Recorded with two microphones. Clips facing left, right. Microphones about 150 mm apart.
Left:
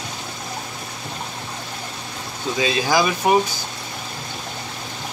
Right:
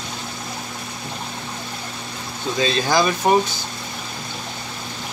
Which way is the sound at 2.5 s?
10° left (ahead or behind).